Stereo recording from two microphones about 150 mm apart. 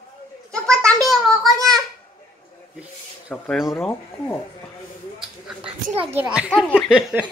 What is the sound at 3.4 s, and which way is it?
Speech, centre (ahead or behind).